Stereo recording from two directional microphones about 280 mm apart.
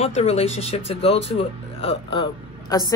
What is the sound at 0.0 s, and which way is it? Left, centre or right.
Speech, left.